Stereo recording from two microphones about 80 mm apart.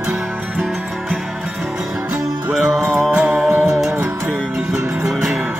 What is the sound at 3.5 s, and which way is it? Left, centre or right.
Music, right.